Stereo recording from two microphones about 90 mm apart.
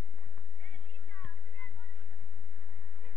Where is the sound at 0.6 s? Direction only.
20° left (ahead or behind).